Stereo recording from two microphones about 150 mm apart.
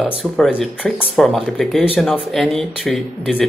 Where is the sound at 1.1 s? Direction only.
Centre (ahead or behind).